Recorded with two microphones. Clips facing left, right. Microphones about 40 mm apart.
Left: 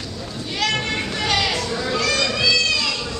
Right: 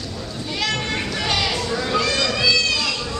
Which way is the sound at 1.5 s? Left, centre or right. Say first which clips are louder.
Right 1 dB; centre.